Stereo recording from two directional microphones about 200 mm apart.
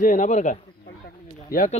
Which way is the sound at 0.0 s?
40° left (ahead or behind).